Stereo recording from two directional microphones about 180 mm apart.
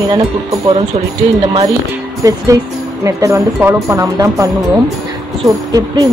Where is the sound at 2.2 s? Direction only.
20° right (ahead or behind).